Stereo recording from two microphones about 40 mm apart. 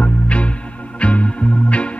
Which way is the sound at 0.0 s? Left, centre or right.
Left.